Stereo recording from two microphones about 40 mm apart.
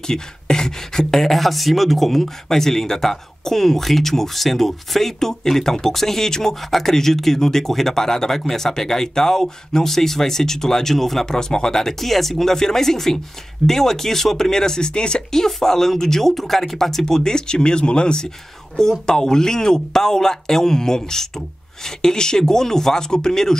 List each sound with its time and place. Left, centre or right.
0.0 s speech: centre
11.3 s speech: centre
15.4 s speech: centre